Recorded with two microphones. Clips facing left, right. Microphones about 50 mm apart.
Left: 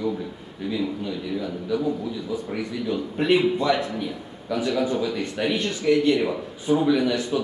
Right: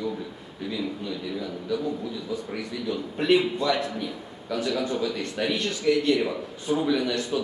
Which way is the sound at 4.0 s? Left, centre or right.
Centre.